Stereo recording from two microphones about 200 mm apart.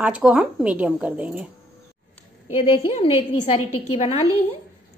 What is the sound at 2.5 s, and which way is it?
Speech, 30° left (ahead or behind).